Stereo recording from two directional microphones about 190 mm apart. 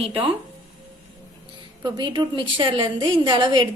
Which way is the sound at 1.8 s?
20° right (ahead or behind).